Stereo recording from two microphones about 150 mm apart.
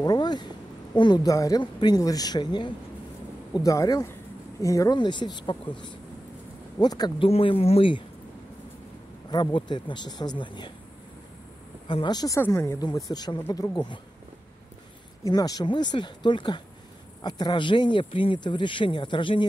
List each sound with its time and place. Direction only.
0.0 s speech: 25° left (ahead or behind)
7.2 s speech: 40° left (ahead or behind)
9.3 s speech: 30° left (ahead or behind)
11.9 s speech: 30° left (ahead or behind)
12.4 s speech: 15° left (ahead or behind)
12.8 s speech: 25° left (ahead or behind)
15.2 s speech: 25° left (ahead or behind)